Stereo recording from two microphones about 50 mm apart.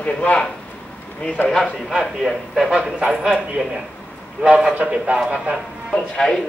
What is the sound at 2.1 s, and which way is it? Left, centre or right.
A man's voice, centre.